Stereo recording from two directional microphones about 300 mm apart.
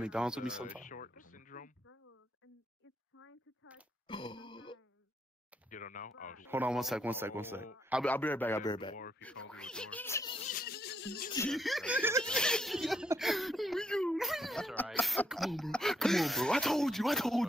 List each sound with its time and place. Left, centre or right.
0.0 s speech: centre
0.8 s a sound: left
4.1 s grunt: centre
5.7 s speech: left
6.4 s a man's voice: centre
9.2 s speech: centre
10.5 s a sound: left
11.3 s speech: centre